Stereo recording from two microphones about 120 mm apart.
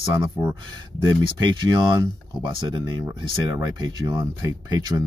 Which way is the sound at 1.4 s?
40° right (ahead or behind).